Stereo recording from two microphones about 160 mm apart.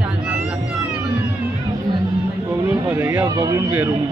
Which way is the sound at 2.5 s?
15° right (ahead or behind).